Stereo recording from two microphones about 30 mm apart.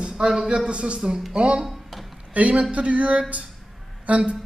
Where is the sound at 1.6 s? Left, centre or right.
Centre.